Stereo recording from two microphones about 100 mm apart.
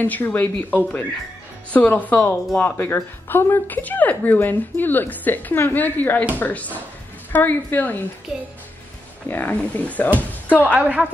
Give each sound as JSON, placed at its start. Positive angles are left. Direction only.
{"t": 0.0, "sound": "speech", "side_deg": 15}
{"t": 9.3, "sound": "speech", "side_deg": 15}
{"t": 10.7, "sound": "a woman's voice", "side_deg": -15}